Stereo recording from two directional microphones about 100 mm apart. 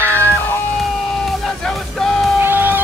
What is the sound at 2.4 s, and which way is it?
Music, 20° right (ahead or behind).